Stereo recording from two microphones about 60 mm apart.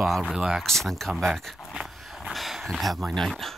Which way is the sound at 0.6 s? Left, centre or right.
Centre.